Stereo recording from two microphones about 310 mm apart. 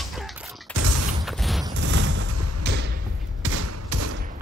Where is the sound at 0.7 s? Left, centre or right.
Right.